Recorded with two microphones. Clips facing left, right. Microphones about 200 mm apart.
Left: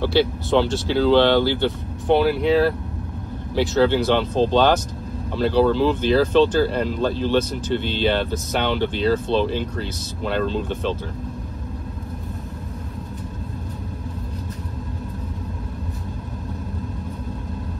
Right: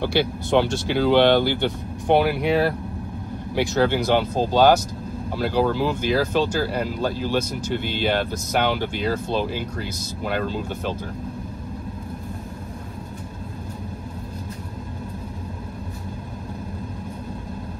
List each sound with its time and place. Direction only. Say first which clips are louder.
0.0 s speech: left 3 dB; 15° right (ahead or behind)